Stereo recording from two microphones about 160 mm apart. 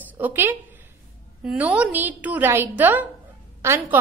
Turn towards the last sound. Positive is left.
turn(degrees=-15)  # may be behind; listen again after turning